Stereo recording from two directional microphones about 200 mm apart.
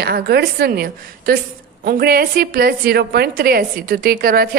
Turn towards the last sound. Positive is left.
turn(degrees=-50)  # may be behind; listen again after turning